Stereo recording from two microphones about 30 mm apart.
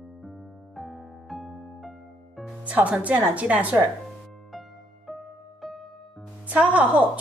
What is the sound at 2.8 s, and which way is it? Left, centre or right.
Speech, right.